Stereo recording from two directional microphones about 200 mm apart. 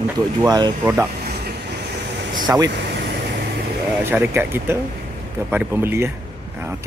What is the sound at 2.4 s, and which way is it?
Speech, 15° right (ahead or behind).